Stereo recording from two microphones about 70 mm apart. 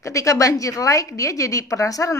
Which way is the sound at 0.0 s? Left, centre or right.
Left.